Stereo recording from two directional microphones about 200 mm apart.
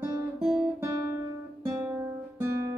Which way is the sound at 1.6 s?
5° right (ahead or behind).